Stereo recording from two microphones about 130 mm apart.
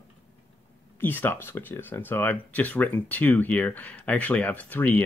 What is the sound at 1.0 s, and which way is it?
Speech, 15° left (ahead or behind).